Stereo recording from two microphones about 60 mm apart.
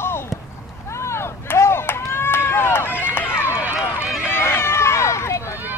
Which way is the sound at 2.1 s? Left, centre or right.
Left.